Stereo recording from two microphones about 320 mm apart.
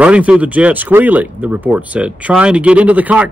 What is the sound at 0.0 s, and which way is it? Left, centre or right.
Speech, centre.